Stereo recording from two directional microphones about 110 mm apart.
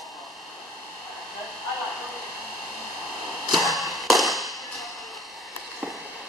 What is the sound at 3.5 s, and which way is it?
Tap, centre (ahead or behind).